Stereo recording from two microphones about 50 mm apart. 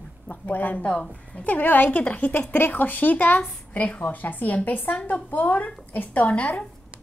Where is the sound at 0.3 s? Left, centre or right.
Left.